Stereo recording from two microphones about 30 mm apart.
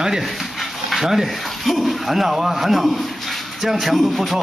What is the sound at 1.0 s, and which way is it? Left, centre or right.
Speech, centre.